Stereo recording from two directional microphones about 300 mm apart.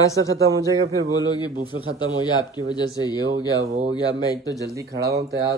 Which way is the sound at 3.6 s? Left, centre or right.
Right.